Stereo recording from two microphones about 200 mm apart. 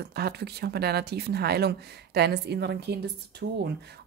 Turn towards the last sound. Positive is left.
turn(degrees=-55)  # may be behind; listen again after turning